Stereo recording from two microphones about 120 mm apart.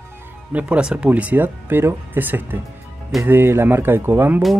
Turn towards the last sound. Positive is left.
turn(degrees=-15)  # may be behind; listen again after turning